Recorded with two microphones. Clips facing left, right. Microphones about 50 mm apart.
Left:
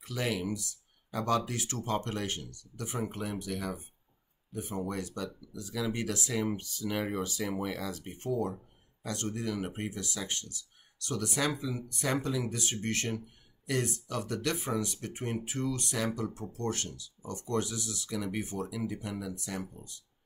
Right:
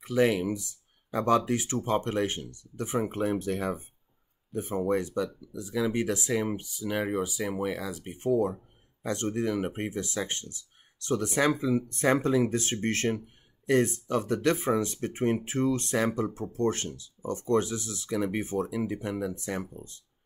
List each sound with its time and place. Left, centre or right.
0.0 s speech: right